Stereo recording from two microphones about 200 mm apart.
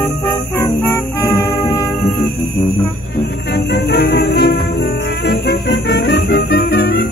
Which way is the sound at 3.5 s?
55° left (ahead or behind).